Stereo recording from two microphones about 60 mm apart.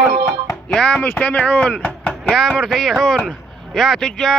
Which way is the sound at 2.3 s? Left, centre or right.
Centre.